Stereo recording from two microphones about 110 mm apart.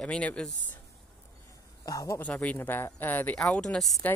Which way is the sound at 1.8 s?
30° left (ahead or behind).